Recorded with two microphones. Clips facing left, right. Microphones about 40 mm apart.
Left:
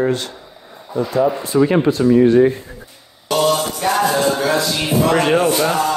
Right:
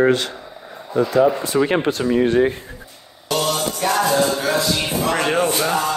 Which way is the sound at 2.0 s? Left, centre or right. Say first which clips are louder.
Left 8 dB; right.